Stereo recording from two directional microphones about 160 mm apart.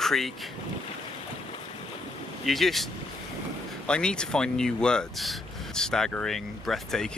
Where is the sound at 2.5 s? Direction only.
Centre (ahead or behind).